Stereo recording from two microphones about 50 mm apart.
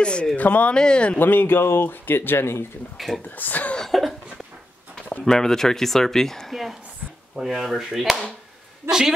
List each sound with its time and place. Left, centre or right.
0.0 s speech: left
0.4 s speech: left
0.7 s speech: centre
1.1 s speech: left
3.0 s speech: centre
3.3 s speech: left
3.7 s speech: centre
5.2 s a woman's voice: centre